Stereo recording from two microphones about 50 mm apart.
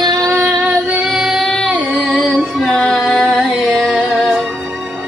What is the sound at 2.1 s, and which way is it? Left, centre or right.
Female singing, centre.